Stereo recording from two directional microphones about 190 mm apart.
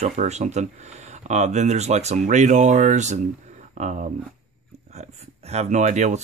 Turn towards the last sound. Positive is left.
turn(degrees=-40)  # may be behind; listen again after turning